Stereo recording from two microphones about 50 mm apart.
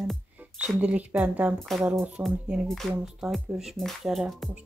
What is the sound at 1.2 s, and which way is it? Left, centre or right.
Speech, right.